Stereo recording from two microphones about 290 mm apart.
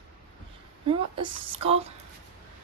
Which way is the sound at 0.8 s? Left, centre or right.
Centre.